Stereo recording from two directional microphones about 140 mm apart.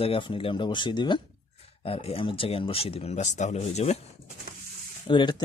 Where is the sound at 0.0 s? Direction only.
40° left (ahead or behind).